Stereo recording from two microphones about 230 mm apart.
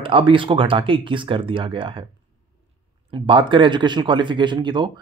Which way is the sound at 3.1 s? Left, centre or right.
Right.